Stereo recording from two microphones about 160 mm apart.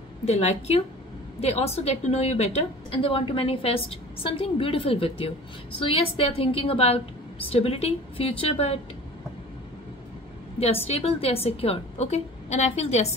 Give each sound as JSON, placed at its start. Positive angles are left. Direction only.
{"t": 0.2, "sound": "a woman's voice", "side_deg": 40}
{"t": 10.6, "sound": "a woman's voice", "side_deg": 40}